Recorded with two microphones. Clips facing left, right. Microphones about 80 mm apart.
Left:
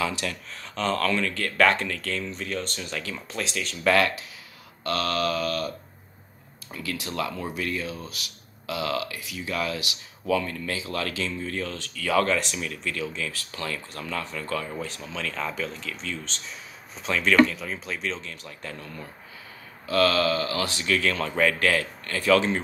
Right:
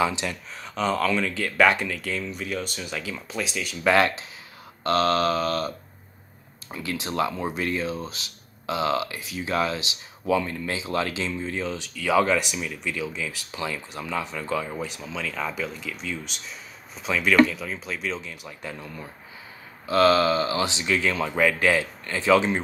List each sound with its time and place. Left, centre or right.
0.0 s speech: right
3.9 s speech: right
6.7 s speech: right
19.9 s speech: right